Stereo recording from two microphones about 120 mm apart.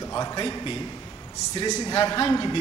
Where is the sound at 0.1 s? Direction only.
35° left (ahead or behind).